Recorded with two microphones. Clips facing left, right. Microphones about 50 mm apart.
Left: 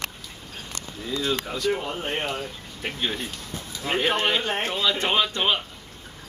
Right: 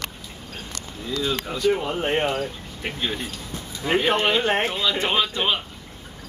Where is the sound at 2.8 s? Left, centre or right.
Centre.